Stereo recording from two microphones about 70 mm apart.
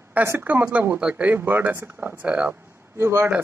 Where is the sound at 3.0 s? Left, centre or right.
Right.